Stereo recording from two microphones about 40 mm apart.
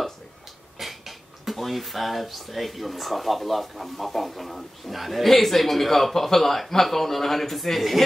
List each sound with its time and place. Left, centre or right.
0.7 s speech: centre